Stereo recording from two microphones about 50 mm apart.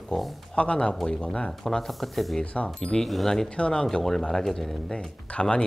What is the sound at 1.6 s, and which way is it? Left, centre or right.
Speech, centre.